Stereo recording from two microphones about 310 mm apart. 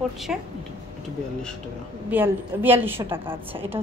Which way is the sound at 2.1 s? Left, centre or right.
Centre.